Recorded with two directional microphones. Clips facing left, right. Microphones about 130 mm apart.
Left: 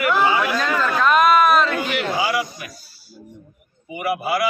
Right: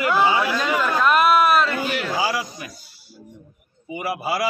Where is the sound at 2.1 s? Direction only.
35° right (ahead or behind).